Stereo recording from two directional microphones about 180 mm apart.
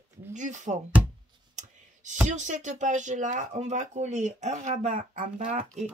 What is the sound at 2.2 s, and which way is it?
Speech, 40° right (ahead or behind).